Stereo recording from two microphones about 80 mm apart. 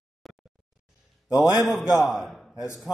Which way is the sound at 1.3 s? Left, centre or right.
Left.